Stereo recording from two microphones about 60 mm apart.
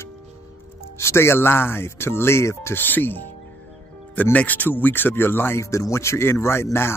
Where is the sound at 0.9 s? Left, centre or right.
Left.